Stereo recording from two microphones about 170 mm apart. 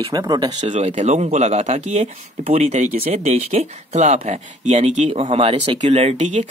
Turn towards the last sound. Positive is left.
turn(degrees=-40)  # may be behind; listen again after turning